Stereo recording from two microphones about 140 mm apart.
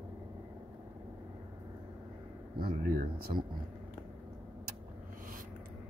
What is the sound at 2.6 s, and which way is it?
Speech, 90° right.